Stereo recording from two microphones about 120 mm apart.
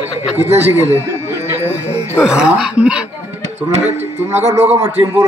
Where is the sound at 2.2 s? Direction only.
5° right (ahead or behind).